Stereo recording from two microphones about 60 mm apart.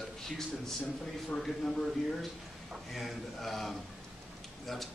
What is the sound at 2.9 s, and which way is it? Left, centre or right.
Speech, centre.